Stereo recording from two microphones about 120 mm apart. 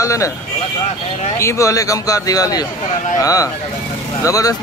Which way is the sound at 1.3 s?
25° left (ahead or behind).